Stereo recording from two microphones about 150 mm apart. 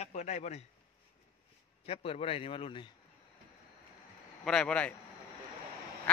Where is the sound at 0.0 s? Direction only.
50° left (ahead or behind).